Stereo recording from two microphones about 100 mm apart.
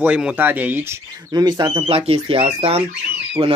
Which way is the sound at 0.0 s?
10° right (ahead or behind).